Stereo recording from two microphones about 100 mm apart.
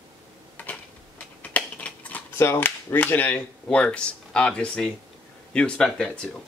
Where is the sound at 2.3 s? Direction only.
25° left (ahead or behind); by 6.1 s 10° left (ahead or behind).